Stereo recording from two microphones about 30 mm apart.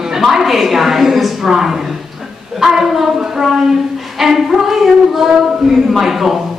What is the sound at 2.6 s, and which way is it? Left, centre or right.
A woman's voice, centre.